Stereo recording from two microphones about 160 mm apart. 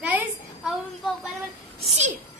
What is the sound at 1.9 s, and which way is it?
Speech, 45° right (ahead or behind).